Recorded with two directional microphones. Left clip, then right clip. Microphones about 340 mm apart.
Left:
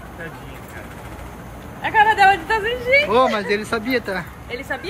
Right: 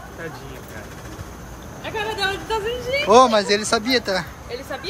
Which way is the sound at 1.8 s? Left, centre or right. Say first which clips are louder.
Left 11 dB; left.